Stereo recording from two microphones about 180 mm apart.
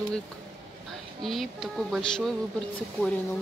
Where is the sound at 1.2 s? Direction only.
Centre (ahead or behind).